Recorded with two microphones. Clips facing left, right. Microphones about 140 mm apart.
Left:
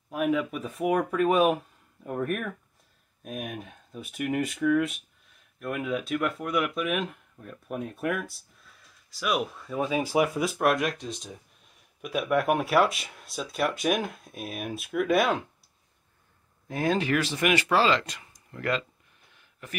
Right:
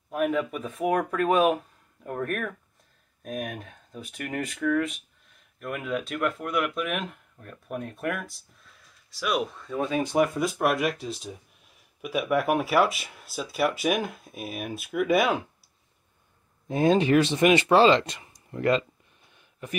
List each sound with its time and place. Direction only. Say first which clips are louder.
0.1 s speech: right 1 dB; centre (ahead or behind)
16.6 s speech: right 5 dB; 20° right (ahead or behind)
19.3 s a sound: right 5 dB; 20° right (ahead or behind)